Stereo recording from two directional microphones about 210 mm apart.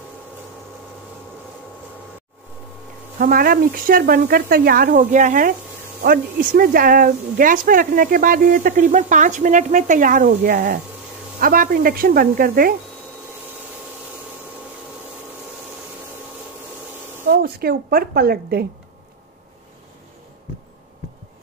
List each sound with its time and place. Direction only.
3.2 s speech: 45° right (ahead or behind)
17.3 s speech: 45° right (ahead or behind)